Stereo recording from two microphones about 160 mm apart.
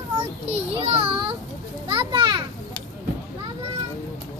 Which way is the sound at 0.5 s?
35° right (ahead or behind).